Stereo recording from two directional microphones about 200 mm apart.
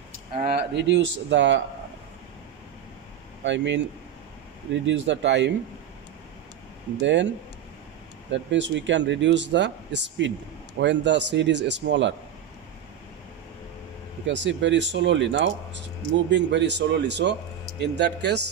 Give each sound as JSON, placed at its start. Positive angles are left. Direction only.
{"t": 0.4, "sound": "speech", "side_deg": -50}
{"t": 3.4, "sound": "speech", "side_deg": -65}
{"t": 4.8, "sound": "speech", "side_deg": -65}
{"t": 7.0, "sound": "speech", "side_deg": -60}
{"t": 8.3, "sound": "speech", "side_deg": -65}
{"t": 14.2, "sound": "speech", "side_deg": -65}